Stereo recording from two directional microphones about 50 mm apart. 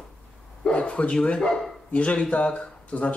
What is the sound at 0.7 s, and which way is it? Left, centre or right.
Speech, left.